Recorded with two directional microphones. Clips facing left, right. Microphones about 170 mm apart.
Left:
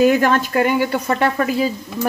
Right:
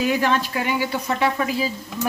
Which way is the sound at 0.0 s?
50° left (ahead or behind).